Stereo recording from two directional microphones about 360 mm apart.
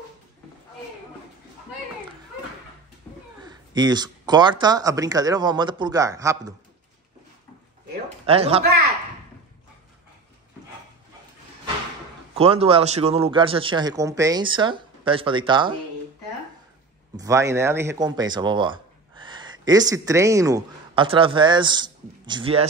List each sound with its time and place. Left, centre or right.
3.4 s a man's voice: centre
7.9 s a sound: centre
12.4 s a man's voice: centre
17.2 s speech: centre